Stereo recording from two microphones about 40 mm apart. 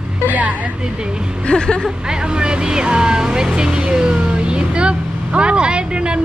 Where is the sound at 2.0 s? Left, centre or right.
Right.